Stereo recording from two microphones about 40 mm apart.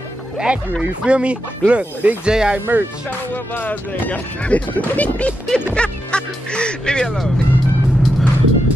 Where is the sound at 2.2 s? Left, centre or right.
Centre.